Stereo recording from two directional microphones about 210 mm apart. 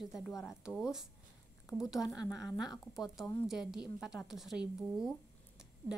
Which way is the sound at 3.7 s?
5° right (ahead or behind).